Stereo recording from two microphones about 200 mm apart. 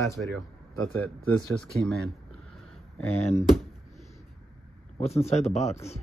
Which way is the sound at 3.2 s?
35° left (ahead or behind).